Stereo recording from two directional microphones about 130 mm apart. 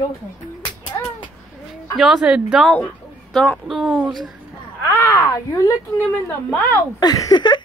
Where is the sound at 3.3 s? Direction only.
10° left (ahead or behind).